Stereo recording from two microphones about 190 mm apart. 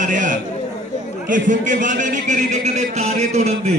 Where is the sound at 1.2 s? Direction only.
45° right (ahead or behind).